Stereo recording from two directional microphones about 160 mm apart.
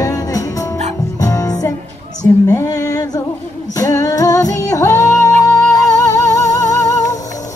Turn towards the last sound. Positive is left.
turn(degrees=20)  # may be behind; listen again after turning